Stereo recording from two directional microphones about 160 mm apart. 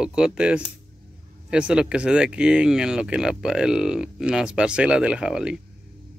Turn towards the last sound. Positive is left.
turn(degrees=-5)  # may be behind; listen again after turning